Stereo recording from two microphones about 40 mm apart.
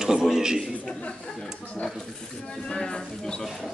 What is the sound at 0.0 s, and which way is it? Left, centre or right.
Speech, centre.